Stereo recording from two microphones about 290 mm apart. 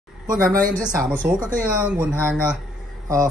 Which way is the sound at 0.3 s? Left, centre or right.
Centre.